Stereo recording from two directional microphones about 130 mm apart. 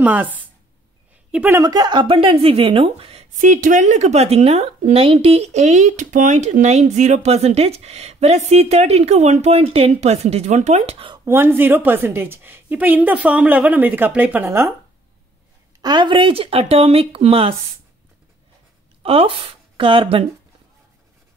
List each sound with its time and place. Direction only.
0.0 s a woman's voice: 10° right (ahead or behind)
1.6 s speech: 30° right (ahead or behind); by 3.3 s 50° right (ahead or behind)
3.3 s speech: 80° right; by 11.1 s 50° right (ahead or behind)
11.2 s a woman's voice: 15° right (ahead or behind)
15.8 s speech: 35° right (ahead or behind)
19.0 s speech: 45° right (ahead or behind)